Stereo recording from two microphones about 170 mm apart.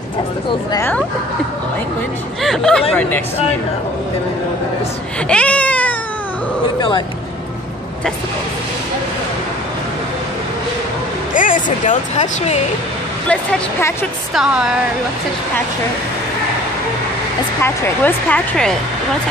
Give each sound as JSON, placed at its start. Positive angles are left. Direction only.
{"t": 0.7, "sound": "speech", "side_deg": 10}
{"t": 2.4, "sound": "speech", "side_deg": 0}
{"t": 5.3, "sound": "cat", "side_deg": 5}
{"t": 6.6, "sound": "speech", "side_deg": 25}
{"t": 11.3, "sound": "speech", "side_deg": 50}
{"t": 13.3, "sound": "speech", "side_deg": 10}
{"t": 14.3, "sound": "speech", "side_deg": -5}
{"t": 17.6, "sound": "speech", "side_deg": 10}